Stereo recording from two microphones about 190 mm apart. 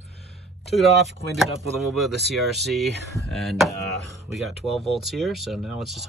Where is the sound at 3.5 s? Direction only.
Centre (ahead or behind).